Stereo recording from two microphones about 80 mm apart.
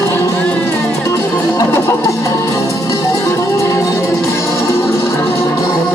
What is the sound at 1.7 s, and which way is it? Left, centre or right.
Music, left.